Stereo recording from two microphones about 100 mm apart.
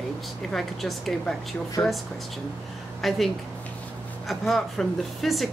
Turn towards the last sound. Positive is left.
turn(degrees=0)  # may be behind; listen again after turning